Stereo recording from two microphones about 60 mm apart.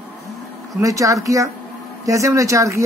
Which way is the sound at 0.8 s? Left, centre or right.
Right.